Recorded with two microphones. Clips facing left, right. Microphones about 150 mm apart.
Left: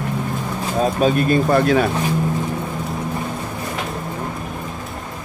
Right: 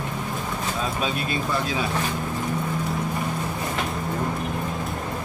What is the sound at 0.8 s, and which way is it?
Speech, 45° left (ahead or behind).